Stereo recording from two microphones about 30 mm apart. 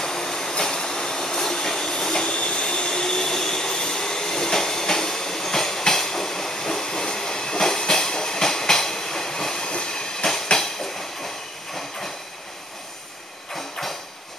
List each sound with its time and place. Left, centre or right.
0.0 s train: centre
2.4 s train: left
2.7 s train: left
13.6 s a sound: centre